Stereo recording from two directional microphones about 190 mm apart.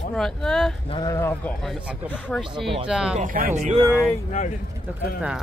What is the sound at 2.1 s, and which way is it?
Speech, 10° left (ahead or behind).